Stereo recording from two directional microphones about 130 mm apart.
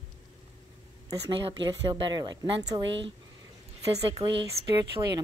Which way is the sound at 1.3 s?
40° right (ahead or behind).